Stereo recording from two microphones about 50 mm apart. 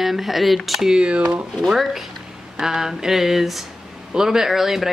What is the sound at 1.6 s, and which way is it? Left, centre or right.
Speech, centre.